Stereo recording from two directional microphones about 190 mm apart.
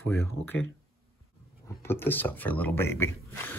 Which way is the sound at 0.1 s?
10° left (ahead or behind).